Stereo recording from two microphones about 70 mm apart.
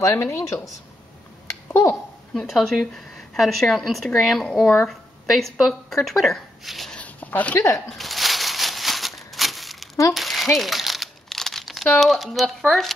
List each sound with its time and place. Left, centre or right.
0.1 s speech: left
1.7 s speech: left
2.3 s a woman's voice: centre
4.5 s speech: centre
4.8 s speech: centre
6.9 s a sound: left
7.5 s speech: left
8.0 s a sound: centre
10.1 s crumpling: centre
12.0 s speech: centre